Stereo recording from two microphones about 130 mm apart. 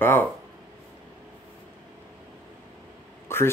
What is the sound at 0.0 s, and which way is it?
Speech, 15° left (ahead or behind).